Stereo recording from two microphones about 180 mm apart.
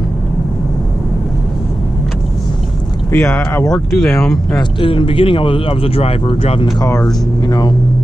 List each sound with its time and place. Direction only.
3.1 s speech: 10° left (ahead or behind)
4.6 s speech: 30° left (ahead or behind)
6.8 s speech: 20° left (ahead or behind)